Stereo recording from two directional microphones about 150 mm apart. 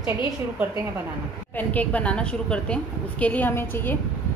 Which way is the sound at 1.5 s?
10° left (ahead or behind).